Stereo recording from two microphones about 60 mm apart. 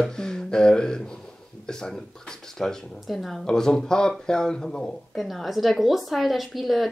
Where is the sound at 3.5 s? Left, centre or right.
Centre.